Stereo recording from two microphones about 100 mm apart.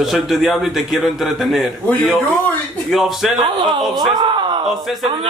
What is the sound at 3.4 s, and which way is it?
Speech, 55° right (ahead or behind).